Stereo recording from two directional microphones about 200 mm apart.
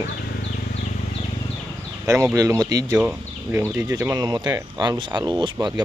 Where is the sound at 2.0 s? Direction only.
15° right (ahead or behind).